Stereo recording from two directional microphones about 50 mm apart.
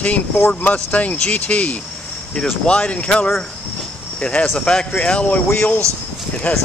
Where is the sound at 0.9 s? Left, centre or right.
Left.